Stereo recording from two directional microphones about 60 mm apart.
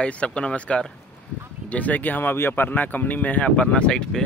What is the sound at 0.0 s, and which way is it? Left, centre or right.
Speech, centre.